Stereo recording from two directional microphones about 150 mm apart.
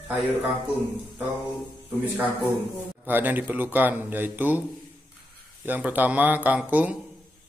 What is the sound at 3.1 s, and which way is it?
Speech, 10° right (ahead or behind).